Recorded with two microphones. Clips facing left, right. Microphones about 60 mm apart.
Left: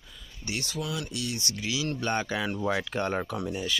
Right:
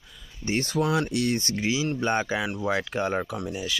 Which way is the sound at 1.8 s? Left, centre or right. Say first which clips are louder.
Right 4 dB; centre.